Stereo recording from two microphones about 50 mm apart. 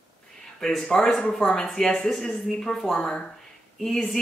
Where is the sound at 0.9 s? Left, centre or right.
Centre.